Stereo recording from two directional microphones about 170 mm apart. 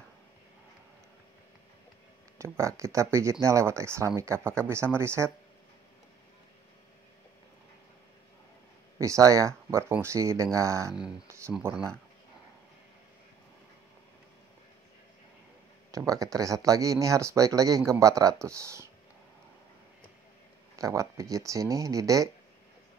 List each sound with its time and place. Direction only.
2.3 s speech: 15° right (ahead or behind)
8.9 s speech: 20° right (ahead or behind)
10.9 s speech: 5° right (ahead or behind)
11.2 s speech: 15° right (ahead or behind)
15.9 s speech: 20° right (ahead or behind)
20.7 s speech: 20° right (ahead or behind)